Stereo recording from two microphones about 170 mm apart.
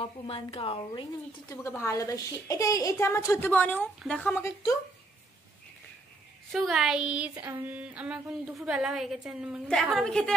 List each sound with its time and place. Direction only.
0.0 s a woman's voice: 30° left (ahead or behind)
1.5 s a woman's voice: 15° left (ahead or behind)
6.5 s a sound: centre (ahead or behind)